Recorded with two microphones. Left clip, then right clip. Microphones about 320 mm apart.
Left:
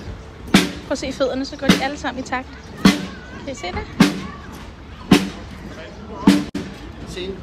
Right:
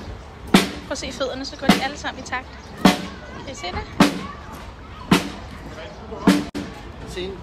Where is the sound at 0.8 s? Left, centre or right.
Centre.